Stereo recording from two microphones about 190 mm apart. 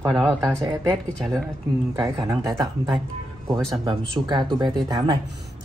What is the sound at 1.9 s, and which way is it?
Speech, 20° right (ahead or behind).